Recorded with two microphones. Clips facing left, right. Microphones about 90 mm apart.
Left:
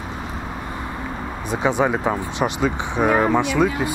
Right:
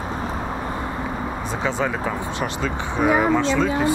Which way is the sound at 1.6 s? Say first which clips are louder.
Left 5 dB; 20° left (ahead or behind).